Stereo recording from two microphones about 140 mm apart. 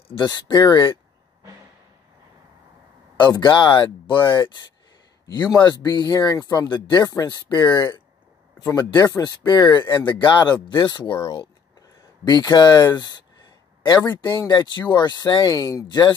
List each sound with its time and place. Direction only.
0.1 s speech: 30° left (ahead or behind)
3.2 s speech: 35° left (ahead or behind)
4.2 s speech: 15° left (ahead or behind)
14.3 s speech: 30° left (ahead or behind)